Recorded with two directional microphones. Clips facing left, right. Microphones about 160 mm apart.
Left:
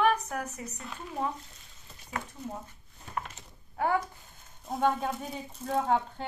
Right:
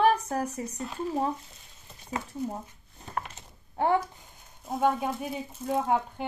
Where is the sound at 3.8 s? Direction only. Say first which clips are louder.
Right 3 dB; 25° right (ahead or behind).